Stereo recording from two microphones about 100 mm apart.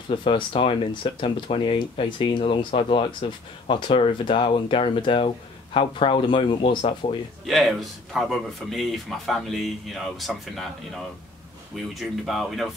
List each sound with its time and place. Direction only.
0.1 s speech: 60° left (ahead or behind)
7.0 s speech: 80° left
7.4 s speech: centre (ahead or behind)
11.7 s speech: centre (ahead or behind)